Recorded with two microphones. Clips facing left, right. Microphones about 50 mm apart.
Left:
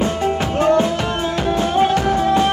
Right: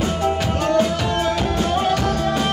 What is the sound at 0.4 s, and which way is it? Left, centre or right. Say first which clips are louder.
Music: left 5 dB; left.